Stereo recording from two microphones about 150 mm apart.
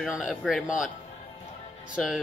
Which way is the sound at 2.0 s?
5° left (ahead or behind).